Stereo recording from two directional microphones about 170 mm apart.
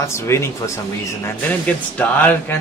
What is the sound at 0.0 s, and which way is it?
Speech, 15° left (ahead or behind).